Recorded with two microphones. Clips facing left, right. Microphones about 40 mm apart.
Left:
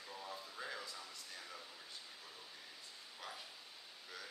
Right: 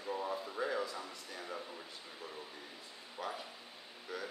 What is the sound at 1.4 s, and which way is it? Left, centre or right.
Speech, right.